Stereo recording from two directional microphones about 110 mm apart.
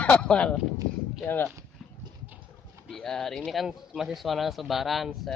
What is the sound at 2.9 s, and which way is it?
Speech, 5° left (ahead or behind).